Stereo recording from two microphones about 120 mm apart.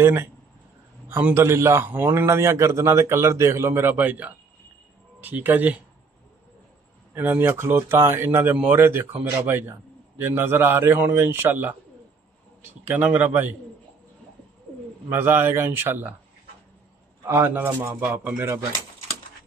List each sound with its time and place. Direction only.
0.0 s a man's voice: 20° right (ahead or behind)
7.2 s a man's voice: 20° right (ahead or behind)
12.8 s a man's voice: 15° right (ahead or behind)
15.0 s a man's voice: 20° right (ahead or behind)
17.3 s a man's voice: 20° right (ahead or behind)